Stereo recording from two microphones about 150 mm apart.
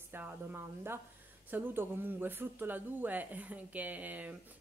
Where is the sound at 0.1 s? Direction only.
15° right (ahead or behind).